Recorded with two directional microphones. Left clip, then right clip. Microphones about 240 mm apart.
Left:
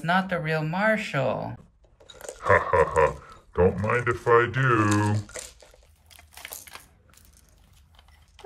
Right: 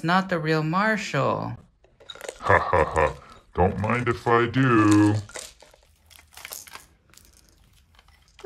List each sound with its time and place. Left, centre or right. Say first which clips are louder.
0.0 s speech: right 2 dB; centre
6.0 s crushing: right 1 dB; centre